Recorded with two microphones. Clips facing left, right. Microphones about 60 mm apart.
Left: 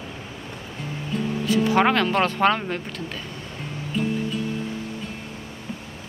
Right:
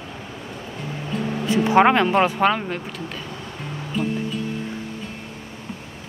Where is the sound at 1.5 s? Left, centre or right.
Right; by 2.8 s centre.